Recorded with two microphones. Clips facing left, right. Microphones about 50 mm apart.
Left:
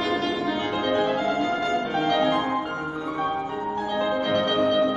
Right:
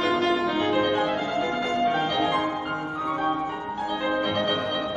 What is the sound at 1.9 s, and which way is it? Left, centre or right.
Music, centre.